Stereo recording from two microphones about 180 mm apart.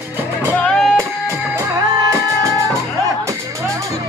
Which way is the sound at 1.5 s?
15° right (ahead or behind).